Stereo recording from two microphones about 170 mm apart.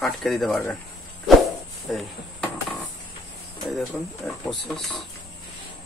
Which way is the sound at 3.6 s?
Centre (ahead or behind).